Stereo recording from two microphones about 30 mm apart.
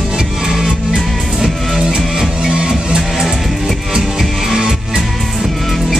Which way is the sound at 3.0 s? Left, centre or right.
Centre.